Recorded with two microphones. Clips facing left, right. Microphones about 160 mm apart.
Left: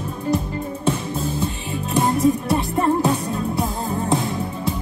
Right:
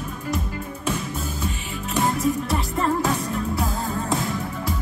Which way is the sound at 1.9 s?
25° left (ahead or behind).